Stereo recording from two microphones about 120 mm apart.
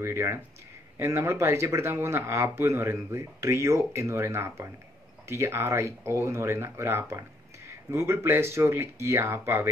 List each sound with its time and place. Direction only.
0.0 s speech: 20° right (ahead or behind)